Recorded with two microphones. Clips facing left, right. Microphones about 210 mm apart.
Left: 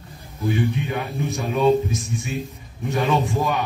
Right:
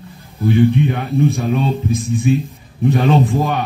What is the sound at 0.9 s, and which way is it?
A man's voice, 55° right (ahead or behind).